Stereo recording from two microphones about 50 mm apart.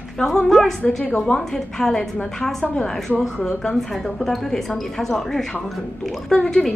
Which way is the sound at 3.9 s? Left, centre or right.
Centre.